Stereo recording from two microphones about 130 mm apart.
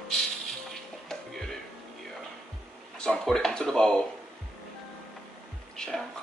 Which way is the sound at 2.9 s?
5° left (ahead or behind).